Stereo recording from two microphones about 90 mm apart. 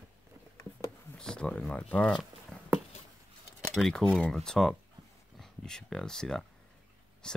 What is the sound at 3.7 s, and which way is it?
Speech, centre (ahead or behind).